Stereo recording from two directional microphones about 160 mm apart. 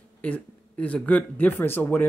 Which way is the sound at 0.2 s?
10° left (ahead or behind).